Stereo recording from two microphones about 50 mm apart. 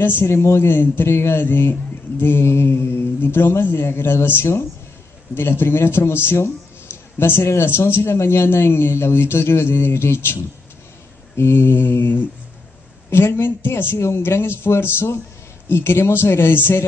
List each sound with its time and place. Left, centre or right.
0.0 s mantra: left
0.3 s speech: left
0.6 s mantra: left
1.0 s speech: left
1.4 s mantra: left
11.3 s mantra: left
13.9 s speech: left
15.7 s mantra: left